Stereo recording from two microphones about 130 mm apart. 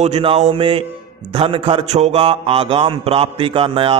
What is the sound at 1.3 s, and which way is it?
Speech, 45° right (ahead or behind).